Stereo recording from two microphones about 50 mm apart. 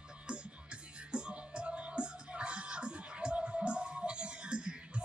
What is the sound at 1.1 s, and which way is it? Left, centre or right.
Music, centre.